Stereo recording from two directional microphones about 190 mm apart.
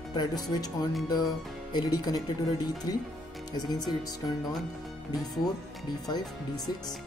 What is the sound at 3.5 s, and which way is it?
Music, 20° left (ahead or behind).